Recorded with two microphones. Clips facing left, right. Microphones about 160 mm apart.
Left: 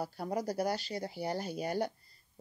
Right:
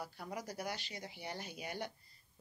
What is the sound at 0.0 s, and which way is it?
Speech, 35° left (ahead or behind).